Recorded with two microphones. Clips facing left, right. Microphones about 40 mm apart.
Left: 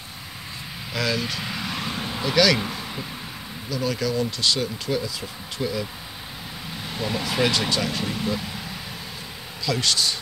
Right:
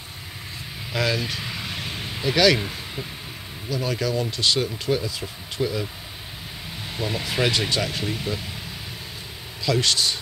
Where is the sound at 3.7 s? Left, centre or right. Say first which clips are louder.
Even; right.